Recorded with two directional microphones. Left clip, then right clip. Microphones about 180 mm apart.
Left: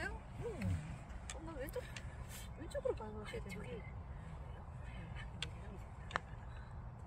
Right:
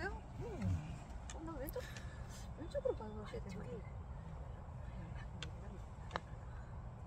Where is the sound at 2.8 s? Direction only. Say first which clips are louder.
Left 2 dB; 25° left (ahead or behind).